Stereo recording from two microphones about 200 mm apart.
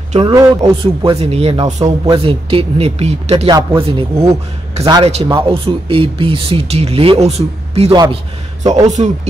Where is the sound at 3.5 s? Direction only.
15° right (ahead or behind).